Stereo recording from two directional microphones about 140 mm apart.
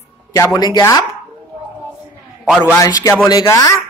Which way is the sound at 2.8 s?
25° left (ahead or behind).